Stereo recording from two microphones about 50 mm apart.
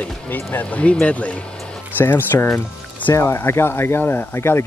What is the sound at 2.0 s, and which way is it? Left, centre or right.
Speech, left.